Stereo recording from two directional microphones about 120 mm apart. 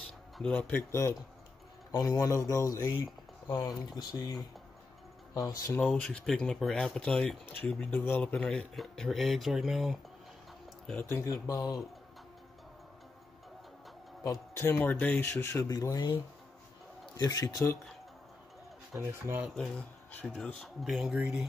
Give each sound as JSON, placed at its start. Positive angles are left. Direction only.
{"t": 0.4, "sound": "speech", "side_deg": 10}
{"t": 1.9, "sound": "speech", "side_deg": 30}
{"t": 5.9, "sound": "speech", "side_deg": 10}
{"t": 11.1, "sound": "speech", "side_deg": 25}
{"t": 14.2, "sound": "speech", "side_deg": 30}
{"t": 17.2, "sound": "speech", "side_deg": 35}
{"t": 18.9, "sound": "speech", "side_deg": -20}
{"t": 20.1, "sound": "speech", "side_deg": 10}